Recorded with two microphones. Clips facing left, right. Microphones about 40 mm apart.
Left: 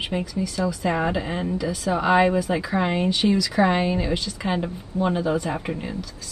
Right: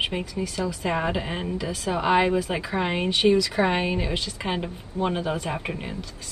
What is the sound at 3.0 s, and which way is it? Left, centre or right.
Speech, right.